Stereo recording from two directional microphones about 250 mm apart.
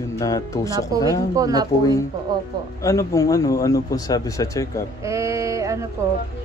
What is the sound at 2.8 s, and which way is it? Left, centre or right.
Speech, centre.